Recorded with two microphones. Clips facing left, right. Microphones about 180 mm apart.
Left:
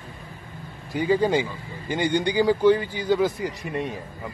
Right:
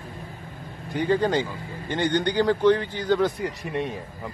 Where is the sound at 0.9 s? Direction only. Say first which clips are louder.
Left 1 dB; 5° left (ahead or behind).